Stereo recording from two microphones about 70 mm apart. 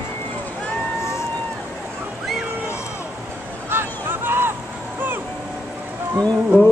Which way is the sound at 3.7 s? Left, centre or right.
Right.